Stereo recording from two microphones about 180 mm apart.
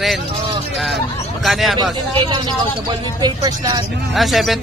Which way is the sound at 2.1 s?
25° right (ahead or behind).